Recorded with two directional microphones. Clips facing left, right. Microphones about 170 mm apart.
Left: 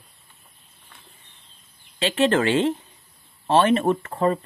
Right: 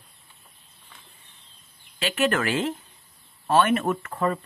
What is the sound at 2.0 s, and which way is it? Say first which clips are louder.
Speech: left 4 dB; 30° left (ahead or behind).